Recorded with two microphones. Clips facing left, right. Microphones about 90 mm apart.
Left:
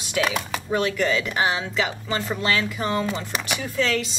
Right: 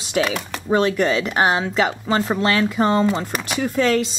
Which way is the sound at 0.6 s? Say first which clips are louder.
Right 6 dB; 30° right (ahead or behind).